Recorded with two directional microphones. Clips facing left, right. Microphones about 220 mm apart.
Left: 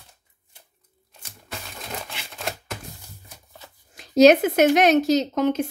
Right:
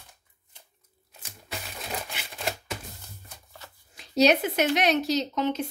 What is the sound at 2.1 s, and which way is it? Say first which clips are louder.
Typewriter: left 1 dB; 10° right (ahead or behind).